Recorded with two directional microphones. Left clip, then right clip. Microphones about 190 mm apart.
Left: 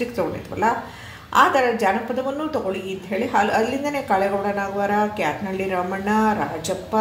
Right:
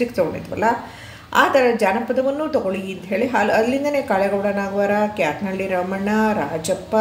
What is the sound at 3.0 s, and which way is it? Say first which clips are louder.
A woman's voice: right 2 dB; 25° right (ahead or behind).